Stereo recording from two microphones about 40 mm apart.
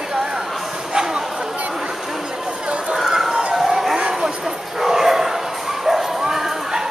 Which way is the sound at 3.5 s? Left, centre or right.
Centre.